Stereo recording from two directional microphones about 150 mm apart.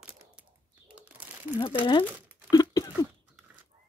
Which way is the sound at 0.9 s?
10° right (ahead or behind).